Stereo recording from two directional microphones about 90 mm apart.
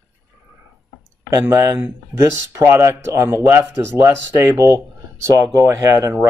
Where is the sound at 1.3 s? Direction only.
40° right (ahead or behind).